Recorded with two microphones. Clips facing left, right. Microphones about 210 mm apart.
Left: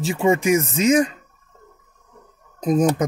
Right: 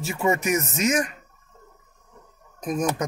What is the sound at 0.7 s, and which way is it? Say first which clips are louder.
Speech: left 7 dB; 30° left (ahead or behind).